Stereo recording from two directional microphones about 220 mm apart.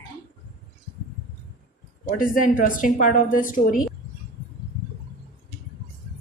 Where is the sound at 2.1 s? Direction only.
40° left (ahead or behind).